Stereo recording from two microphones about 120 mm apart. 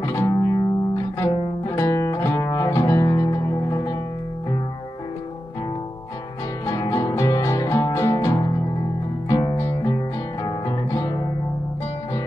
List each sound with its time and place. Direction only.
0.0 s music: 25° left (ahead or behind)
6.6 s music: 30° left (ahead or behind)